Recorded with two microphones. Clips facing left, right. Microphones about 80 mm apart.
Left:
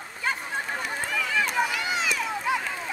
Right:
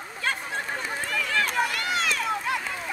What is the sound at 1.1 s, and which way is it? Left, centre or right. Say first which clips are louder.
Run: even; centre.